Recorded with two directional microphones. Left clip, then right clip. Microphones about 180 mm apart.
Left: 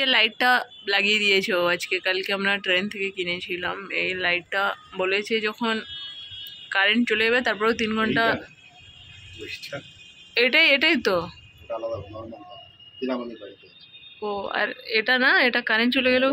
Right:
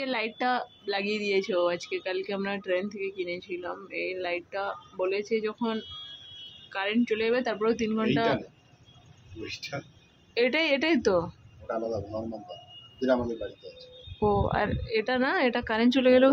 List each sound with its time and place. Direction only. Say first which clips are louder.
0.0 s speech: left 9 dB; 5° right (ahead or behind)
10.3 s a woman's voice: left 7 dB; 10° right (ahead or behind)
14.2 s speech: right 3 dB; 5° right (ahead or behind)
14.5 s speech: left 4 dB; 20° right (ahead or behind)